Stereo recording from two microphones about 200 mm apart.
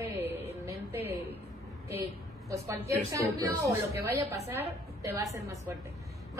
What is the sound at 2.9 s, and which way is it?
A woman's voice, 15° right (ahead or behind).